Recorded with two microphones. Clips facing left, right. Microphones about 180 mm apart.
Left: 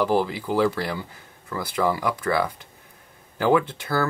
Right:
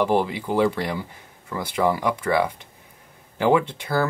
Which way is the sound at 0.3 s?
15° right (ahead or behind).